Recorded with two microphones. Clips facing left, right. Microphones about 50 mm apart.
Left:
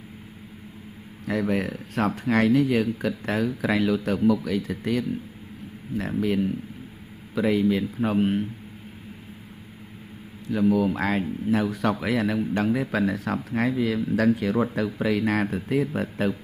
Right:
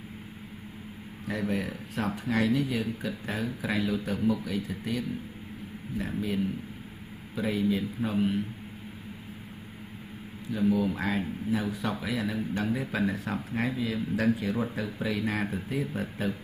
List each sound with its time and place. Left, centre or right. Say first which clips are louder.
1.2 s speech: left 6 dB; left
10.4 s speech: left 5 dB; left